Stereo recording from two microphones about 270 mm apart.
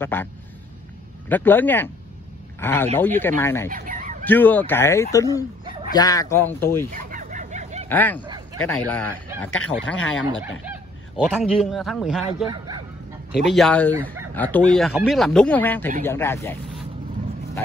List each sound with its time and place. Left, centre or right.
0.0 s speech: centre
1.3 s speech: centre
3.6 s fowl: right
4.2 s speech: centre
6.9 s fowl: right
7.9 s speech: centre
9.9 s speech: left
10.6 s speech: centre